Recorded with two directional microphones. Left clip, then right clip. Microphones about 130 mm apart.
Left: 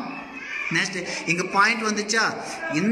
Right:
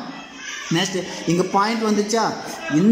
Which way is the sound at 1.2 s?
35° right (ahead or behind).